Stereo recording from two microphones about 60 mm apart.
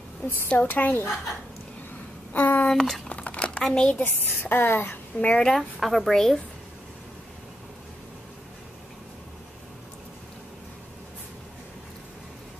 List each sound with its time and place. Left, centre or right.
0.5 s speech: left
2.3 s speech: left
2.7 s speech: centre
3.1 s crumpling: left
3.6 s speech: centre
4.0 s a woman's voice: left
5.2 s speech: centre
5.5 s a woman's voice: centre